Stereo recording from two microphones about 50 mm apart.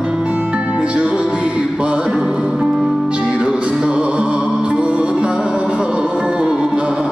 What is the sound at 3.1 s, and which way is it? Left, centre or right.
Music, right.